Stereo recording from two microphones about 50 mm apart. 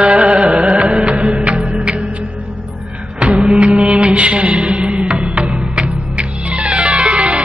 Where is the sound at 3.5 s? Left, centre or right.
Right.